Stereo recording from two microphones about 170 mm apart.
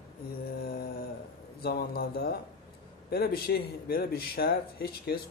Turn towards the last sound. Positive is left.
turn(degrees=65)  # may be behind; listen again after turning